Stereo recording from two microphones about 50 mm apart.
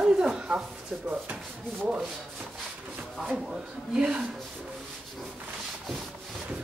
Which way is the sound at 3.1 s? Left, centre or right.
Centre.